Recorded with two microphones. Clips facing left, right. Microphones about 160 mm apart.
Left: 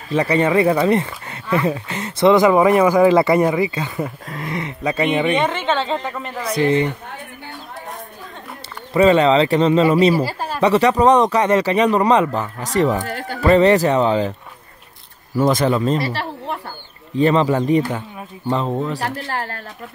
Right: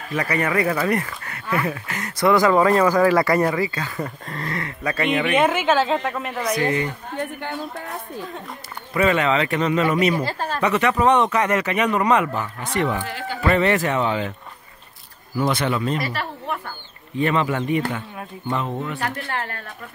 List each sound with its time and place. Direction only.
0.1 s speech: 30° left (ahead or behind)
4.0 s speech: 5° left (ahead or behind)
4.5 s speech: 20° left (ahead or behind)
5.0 s speech: centre (ahead or behind)
6.5 s speech: 25° left (ahead or behind)
8.9 s speech: 30° left (ahead or behind)
10.1 s a woman's voice: 10° left (ahead or behind)
10.6 s speech: 35° left (ahead or behind)
13.5 s speech: 35° left (ahead or behind)
15.4 s speech: 35° left (ahead or behind)